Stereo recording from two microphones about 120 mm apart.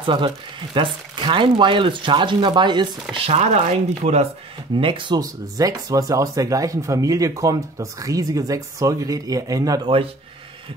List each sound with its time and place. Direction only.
0.0 s speech: 45° right (ahead or behind)
3.3 s speech: 60° right (ahead or behind)
4.7 s speech: 45° right (ahead or behind)
5.2 s speech: 30° right (ahead or behind)